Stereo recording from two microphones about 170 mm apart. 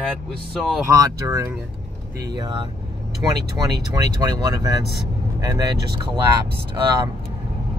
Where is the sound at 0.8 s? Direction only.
20° right (ahead or behind).